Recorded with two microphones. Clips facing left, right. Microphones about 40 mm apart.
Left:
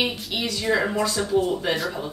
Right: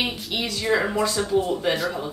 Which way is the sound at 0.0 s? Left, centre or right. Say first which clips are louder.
Left 1 dB; centre.